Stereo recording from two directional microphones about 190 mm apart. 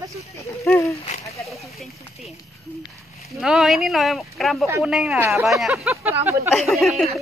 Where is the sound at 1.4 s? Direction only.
Centre (ahead or behind).